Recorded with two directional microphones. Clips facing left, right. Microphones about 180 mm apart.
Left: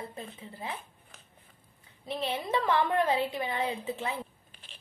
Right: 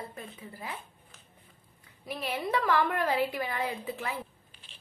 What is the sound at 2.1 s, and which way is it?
A woman's voice, 25° left (ahead or behind).